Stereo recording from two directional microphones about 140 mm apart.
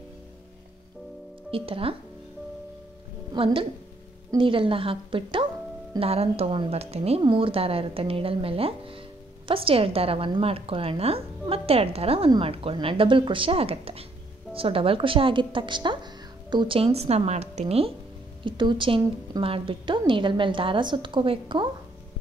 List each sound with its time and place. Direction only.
1.5 s a woman's voice: 40° right (ahead or behind)
4.4 s a woman's voice: 40° right (ahead or behind)
18.4 s a woman's voice: 35° right (ahead or behind)